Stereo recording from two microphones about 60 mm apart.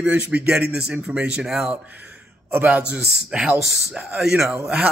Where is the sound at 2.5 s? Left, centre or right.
Right.